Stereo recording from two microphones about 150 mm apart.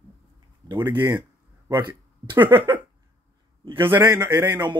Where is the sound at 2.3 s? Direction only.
15° right (ahead or behind).